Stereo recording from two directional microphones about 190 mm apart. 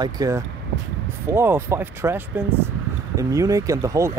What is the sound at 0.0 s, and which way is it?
Speech, 20° right (ahead or behind).